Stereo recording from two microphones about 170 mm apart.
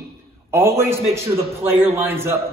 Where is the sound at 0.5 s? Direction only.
15° right (ahead or behind).